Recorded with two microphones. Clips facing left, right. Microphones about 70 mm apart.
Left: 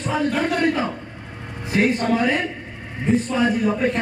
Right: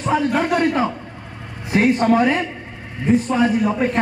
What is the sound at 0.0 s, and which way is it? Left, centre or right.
Speech, right.